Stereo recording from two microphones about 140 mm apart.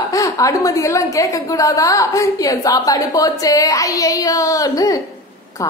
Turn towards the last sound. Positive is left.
turn(degrees=25)  # may be behind; listen again after turning